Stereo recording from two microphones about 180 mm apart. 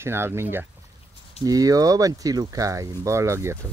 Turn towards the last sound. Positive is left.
turn(degrees=-15)  # may be behind; listen again after turning